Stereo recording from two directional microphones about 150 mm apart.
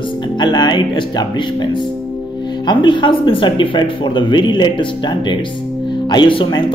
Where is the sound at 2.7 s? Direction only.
30° left (ahead or behind).